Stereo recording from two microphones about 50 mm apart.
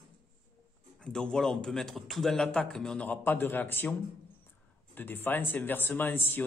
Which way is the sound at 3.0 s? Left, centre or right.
Left.